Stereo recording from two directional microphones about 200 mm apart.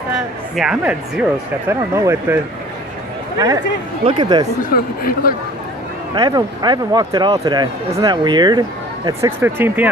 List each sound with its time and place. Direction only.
0.6 s speech: 5° right (ahead or behind)
4.0 s speech: 25° right (ahead or behind)
4.6 s speech: 45° left (ahead or behind)
6.1 s speech: 20° right (ahead or behind)
9.4 s speech: 10° right (ahead or behind)